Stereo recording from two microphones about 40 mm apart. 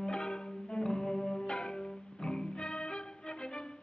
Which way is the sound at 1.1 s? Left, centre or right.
Left.